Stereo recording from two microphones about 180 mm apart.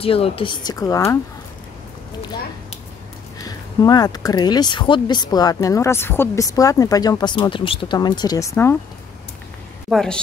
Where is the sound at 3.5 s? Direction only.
20° left (ahead or behind).